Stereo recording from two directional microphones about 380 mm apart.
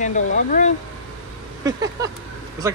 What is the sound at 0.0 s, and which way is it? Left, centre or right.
Speech, centre.